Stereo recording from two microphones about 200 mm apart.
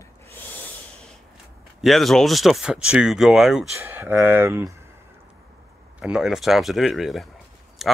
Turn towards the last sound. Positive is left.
turn(degrees=0)  # may be behind; listen again after turning